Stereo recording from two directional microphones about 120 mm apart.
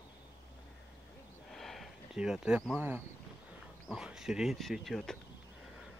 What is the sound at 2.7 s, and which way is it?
Speech, 20° right (ahead or behind).